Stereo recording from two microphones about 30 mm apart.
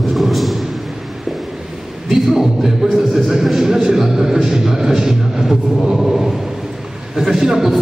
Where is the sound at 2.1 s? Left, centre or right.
Centre.